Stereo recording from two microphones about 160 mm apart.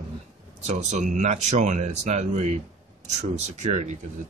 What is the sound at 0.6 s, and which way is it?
Speech, 45° right (ahead or behind).